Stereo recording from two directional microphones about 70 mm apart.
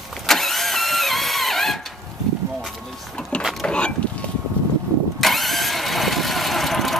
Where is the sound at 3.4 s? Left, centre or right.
Centre.